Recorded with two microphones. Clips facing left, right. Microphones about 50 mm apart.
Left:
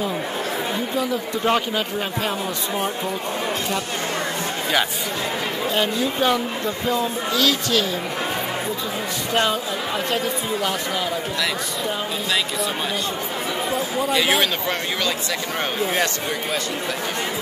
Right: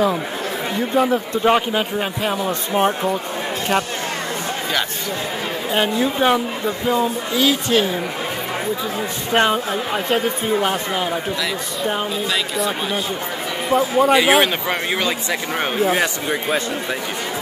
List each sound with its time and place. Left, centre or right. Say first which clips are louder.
0.9 s speech: right 8 dB; right
1.4 s speech: right 3 dB; right
5.7 s speech: right 4 dB; right
9.3 s speech: right 5 dB; right
13.7 s speech: right 12 dB; right
14.3 s speech: right 4 dB; right
16.3 s speech: right 4 dB; right